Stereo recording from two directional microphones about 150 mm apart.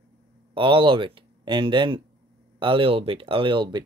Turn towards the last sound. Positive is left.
turn(degrees=-30)  # may be behind; listen again after turning